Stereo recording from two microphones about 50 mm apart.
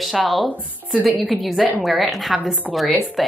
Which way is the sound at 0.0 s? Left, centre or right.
Centre.